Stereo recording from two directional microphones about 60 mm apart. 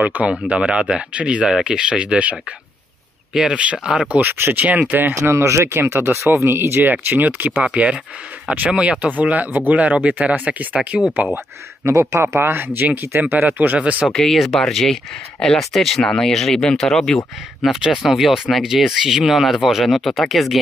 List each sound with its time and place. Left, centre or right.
0.0 s speech: right
3.3 s speech: centre
4.2 s speech: right
4.6 s speech: right
5.2 s speech: right
5.8 s speech: right
7.6 s speech: centre
11.8 s speech: right
12.4 s speech: right
14.0 s speech: centre
17.9 s speech: centre